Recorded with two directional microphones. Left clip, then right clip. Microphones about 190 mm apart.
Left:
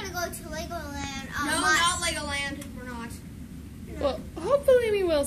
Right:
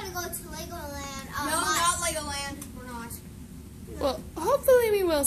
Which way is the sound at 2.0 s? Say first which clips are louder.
Left 1 dB; 10° right (ahead or behind).